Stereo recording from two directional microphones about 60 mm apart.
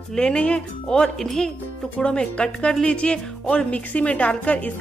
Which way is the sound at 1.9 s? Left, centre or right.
Centre.